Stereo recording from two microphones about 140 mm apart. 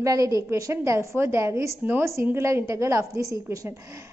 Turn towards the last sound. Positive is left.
turn(degrees=-20)  # may be behind; listen again after turning